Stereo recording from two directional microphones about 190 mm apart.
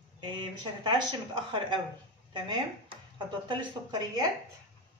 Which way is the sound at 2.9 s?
25° right (ahead or behind).